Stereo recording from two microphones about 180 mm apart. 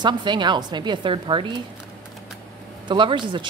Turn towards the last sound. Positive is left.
turn(degrees=-25)  # may be behind; listen again after turning